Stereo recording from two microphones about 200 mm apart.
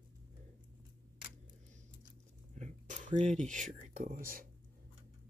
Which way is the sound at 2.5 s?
35° right (ahead or behind).